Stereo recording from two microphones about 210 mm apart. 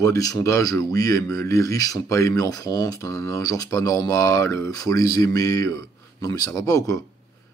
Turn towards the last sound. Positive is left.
turn(degrees=15)  # may be behind; listen again after turning